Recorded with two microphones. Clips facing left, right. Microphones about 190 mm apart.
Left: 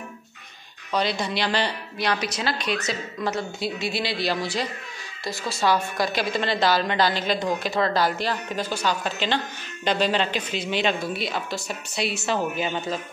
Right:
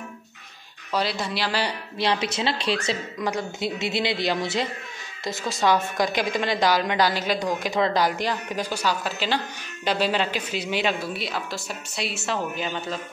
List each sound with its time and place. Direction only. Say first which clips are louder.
0.9 s speech: left 1 dB; centre (ahead or behind)
2.0 s a woman's voice: right 2 dB; 25° right (ahead or behind)
3.3 s a woman's voice: even; 20° right (ahead or behind); by 12.7 s 5° left (ahead or behind)